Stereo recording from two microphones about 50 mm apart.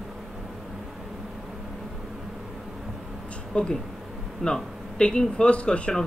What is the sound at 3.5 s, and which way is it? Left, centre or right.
Speech, centre.